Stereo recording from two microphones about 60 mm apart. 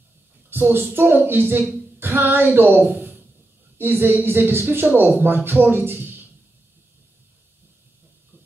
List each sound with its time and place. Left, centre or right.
0.5 s a woman's voice: right